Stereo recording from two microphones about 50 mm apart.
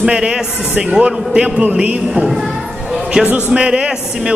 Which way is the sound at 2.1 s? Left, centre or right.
Centre.